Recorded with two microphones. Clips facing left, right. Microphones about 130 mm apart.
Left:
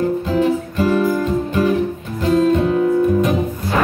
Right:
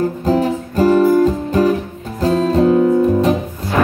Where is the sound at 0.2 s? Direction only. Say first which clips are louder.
Right 1 dB; 40° right (ahead or behind).